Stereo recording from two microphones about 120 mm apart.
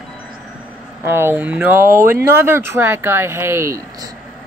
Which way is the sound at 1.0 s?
20° right (ahead or behind).